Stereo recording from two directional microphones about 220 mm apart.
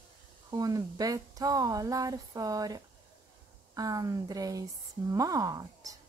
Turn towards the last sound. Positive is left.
turn(degrees=-15)  # may be behind; listen again after turning